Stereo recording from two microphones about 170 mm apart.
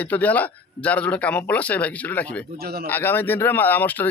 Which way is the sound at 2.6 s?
65° right (ahead or behind).